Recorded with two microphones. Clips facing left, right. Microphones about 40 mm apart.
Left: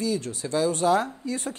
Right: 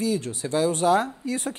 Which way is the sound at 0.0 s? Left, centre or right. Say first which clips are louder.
Right 2 dB; right.